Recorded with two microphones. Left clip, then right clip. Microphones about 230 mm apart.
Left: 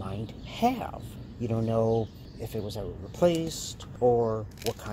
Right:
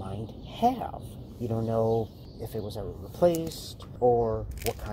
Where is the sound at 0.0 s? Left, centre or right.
Centre.